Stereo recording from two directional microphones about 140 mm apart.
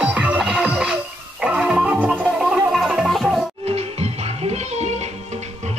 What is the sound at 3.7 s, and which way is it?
Music, 50° right (ahead or behind).